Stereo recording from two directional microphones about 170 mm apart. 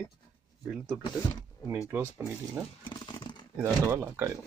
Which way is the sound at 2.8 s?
25° left (ahead or behind).